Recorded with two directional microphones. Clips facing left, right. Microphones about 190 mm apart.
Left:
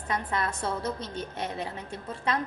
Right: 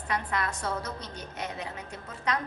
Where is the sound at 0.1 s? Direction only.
25° left (ahead or behind).